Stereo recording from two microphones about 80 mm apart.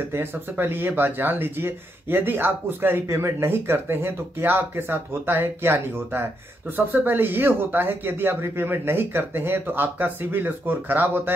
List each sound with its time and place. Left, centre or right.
0.1 s speech: right